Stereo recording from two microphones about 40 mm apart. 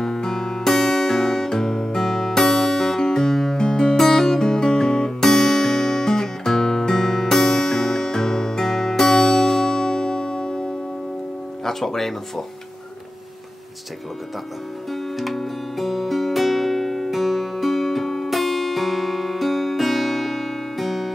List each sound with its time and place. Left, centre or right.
0.0 s music: centre
11.6 s speech: centre
14.9 s music: centre